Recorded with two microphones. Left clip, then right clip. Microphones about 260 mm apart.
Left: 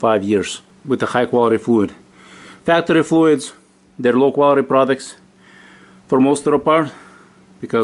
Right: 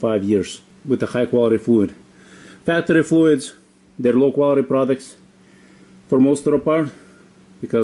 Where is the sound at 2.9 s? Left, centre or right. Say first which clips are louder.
Right 2 dB; centre.